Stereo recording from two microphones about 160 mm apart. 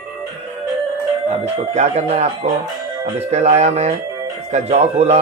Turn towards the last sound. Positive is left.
turn(degrees=-40)  # may be behind; listen again after turning